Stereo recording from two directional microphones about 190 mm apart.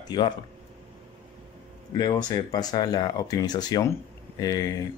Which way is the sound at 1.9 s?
20° left (ahead or behind).